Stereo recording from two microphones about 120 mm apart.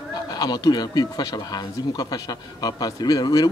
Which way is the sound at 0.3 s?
35° left (ahead or behind).